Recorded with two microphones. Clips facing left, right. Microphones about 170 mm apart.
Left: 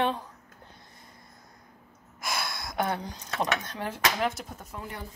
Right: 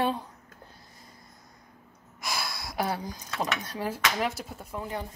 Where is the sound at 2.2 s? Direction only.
Centre (ahead or behind).